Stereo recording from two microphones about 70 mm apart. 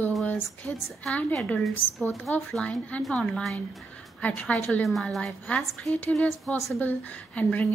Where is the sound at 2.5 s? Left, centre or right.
Centre.